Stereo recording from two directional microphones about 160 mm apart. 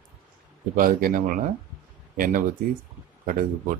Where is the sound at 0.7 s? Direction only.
60° right (ahead or behind).